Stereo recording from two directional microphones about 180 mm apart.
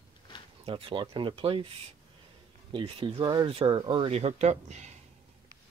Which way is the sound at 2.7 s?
30° right (ahead or behind).